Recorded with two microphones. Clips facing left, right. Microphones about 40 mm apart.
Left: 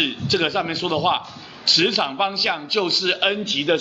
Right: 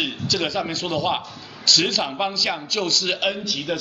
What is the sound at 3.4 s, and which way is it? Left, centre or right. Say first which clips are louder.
Speech: left 6 dB; left.